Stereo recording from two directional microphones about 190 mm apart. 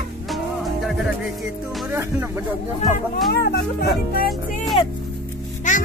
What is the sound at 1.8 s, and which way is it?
Music, 10° right (ahead or behind).